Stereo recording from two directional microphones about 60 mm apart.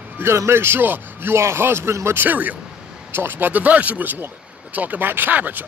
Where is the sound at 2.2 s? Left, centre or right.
Right.